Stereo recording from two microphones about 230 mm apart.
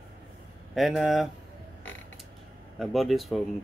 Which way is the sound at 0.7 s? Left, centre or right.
Centre.